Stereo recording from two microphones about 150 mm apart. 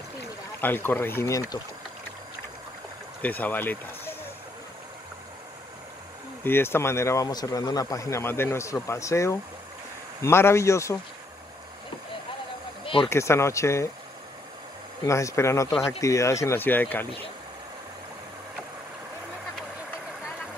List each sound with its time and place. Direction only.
0.6 s speech: 15° left (ahead or behind)
3.2 s speech: 10° left (ahead or behind)
6.4 s speech: 15° left (ahead or behind)
12.8 s a sound: 35° left (ahead or behind)
13.1 s speech: 20° left (ahead or behind)
15.0 s speech: 20° left (ahead or behind)